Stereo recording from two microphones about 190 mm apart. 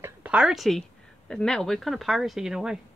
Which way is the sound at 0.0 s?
5° right (ahead or behind).